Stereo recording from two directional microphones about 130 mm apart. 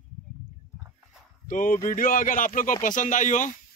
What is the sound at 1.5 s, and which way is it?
Speech, 90° left.